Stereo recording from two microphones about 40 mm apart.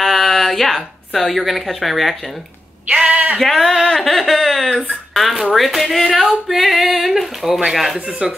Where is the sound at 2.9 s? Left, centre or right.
Right.